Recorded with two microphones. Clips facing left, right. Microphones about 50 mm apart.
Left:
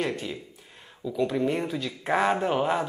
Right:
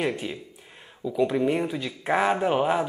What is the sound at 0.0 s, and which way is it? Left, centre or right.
Speech, centre.